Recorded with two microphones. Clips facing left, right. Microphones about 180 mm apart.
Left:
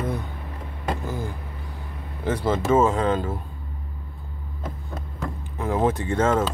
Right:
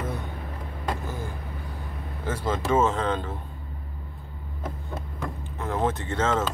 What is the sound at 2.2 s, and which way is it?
Speech, 15° left (ahead or behind).